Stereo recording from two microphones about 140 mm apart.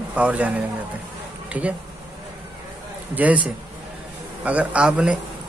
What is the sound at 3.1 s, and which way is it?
Speech, 10° right (ahead or behind).